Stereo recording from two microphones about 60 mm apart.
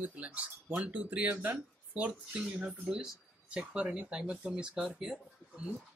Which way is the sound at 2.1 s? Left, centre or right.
Centre.